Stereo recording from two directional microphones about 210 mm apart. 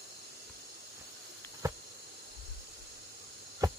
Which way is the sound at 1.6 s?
15° right (ahead or behind).